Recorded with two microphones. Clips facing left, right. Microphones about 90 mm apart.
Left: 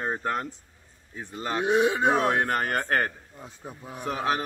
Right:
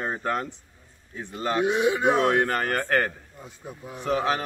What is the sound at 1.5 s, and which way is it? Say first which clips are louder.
Speech: even; 30° left (ahead or behind).